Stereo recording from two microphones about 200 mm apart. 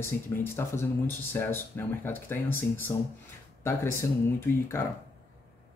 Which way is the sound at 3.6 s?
15° left (ahead or behind).